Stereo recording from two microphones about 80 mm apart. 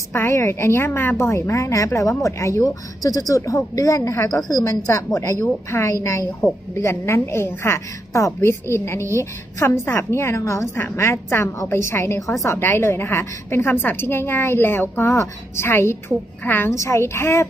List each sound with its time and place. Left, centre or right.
0.1 s a woman's voice: left
4.8 s a woman's voice: left